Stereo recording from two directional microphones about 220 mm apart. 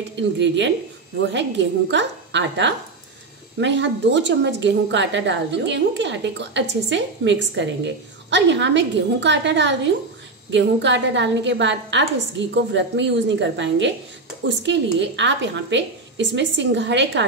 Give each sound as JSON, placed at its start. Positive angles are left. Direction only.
{"t": 0.2, "sound": "a woman's voice", "side_deg": -55}